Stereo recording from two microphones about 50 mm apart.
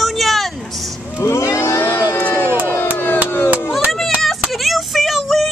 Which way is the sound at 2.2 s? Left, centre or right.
Left.